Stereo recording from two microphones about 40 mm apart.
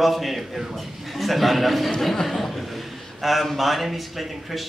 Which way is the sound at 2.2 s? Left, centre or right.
Centre.